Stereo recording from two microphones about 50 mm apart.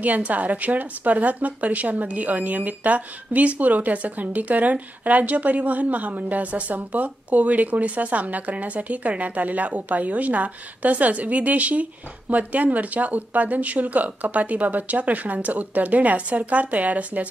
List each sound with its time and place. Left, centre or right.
0.0 s speech: right